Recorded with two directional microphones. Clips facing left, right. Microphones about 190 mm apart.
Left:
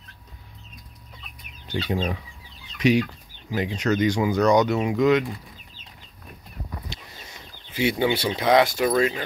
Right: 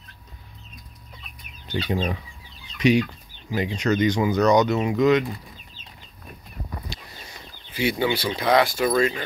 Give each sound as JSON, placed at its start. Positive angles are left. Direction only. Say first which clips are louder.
{"t": 1.7, "sound": "speech", "louder": "right 1 dB", "side_deg": 5}
{"t": 6.9, "sound": "a sound", "louder": "right 1 dB", "side_deg": 20}
{"t": 7.7, "sound": "speech", "louder": "left 1 dB", "side_deg": 20}